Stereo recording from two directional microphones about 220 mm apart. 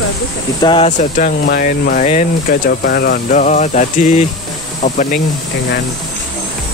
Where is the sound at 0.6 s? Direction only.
20° left (ahead or behind).